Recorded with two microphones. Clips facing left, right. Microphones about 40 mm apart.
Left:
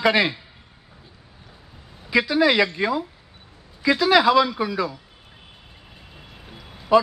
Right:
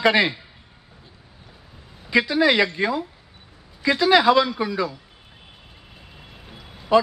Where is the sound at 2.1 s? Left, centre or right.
Centre.